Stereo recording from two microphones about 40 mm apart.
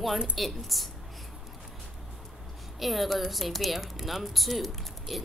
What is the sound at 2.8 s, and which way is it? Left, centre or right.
Speech, centre.